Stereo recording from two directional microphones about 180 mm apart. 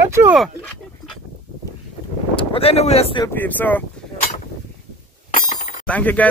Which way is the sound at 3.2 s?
10° left (ahead or behind).